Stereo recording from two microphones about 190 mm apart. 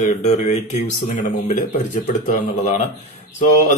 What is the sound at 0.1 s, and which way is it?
Speech, 40° left (ahead or behind).